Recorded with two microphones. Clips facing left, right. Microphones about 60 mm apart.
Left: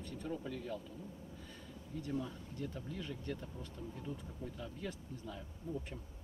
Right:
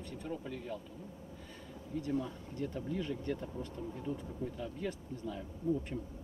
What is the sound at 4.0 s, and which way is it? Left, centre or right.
Speech, centre.